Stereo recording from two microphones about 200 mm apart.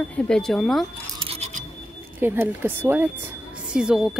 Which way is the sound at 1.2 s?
35° right (ahead or behind).